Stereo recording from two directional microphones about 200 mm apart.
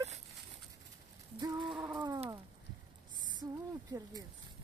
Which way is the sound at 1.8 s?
20° right (ahead or behind).